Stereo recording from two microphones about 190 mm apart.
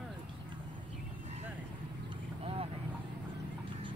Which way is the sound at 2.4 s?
30° right (ahead or behind).